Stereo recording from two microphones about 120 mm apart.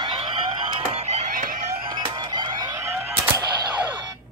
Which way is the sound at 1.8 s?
40° right (ahead or behind).